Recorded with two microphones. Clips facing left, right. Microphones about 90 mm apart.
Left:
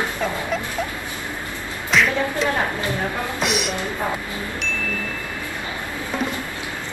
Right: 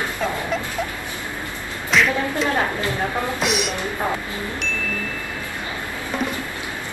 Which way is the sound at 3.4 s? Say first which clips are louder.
Left 2 dB; centre (ahead or behind).